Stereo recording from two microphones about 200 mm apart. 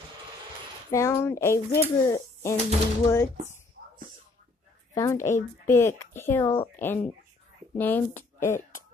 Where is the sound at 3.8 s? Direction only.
60° right (ahead or behind).